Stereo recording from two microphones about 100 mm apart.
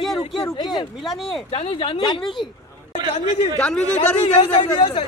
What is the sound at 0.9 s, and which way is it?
Speech, centre (ahead or behind).